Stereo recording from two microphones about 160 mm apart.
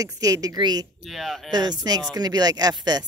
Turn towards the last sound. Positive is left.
turn(degrees=-25)  # may be behind; listen again after turning